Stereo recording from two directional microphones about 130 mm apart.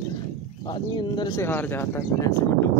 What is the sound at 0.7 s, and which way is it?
Speech, 35° left (ahead or behind).